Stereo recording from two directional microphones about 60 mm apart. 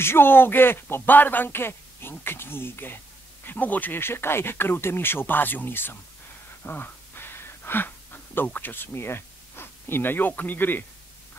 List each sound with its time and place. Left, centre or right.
0.0 s speech: left
6.6 s a sound: left
8.5 s speech: left